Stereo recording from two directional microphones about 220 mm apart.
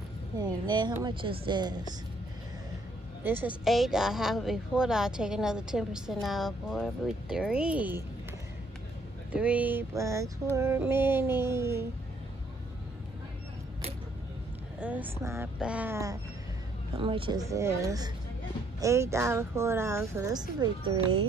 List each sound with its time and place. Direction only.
0.4 s speech: 20° right (ahead or behind)
3.3 s a woman's voice: 10° right (ahead or behind)
9.3 s a woman's voice: 5° right (ahead or behind)
14.8 s a woman's voice: 5° right (ahead or behind)
16.9 s a woman's voice: 25° right (ahead or behind)